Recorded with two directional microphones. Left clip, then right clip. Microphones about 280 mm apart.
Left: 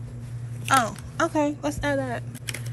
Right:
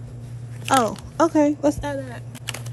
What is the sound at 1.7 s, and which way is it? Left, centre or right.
Speech, centre.